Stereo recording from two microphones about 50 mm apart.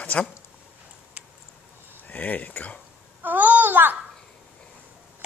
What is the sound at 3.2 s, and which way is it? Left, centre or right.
Babbling, right.